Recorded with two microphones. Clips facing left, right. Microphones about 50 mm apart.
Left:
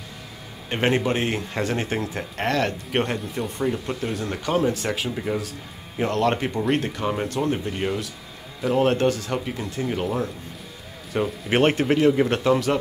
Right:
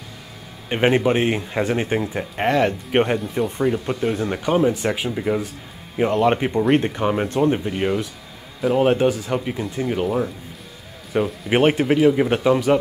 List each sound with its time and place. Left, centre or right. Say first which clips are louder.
0.7 s speech: right 4 dB; centre